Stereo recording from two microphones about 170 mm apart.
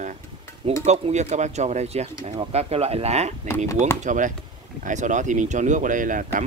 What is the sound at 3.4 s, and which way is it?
Speech, 15° left (ahead or behind).